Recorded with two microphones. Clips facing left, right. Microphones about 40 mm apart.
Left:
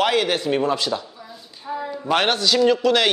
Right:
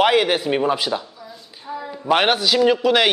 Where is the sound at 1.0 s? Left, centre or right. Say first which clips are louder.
Right 1 dB; centre.